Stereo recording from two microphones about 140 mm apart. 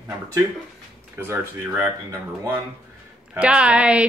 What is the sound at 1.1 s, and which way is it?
Speech, 15° right (ahead or behind).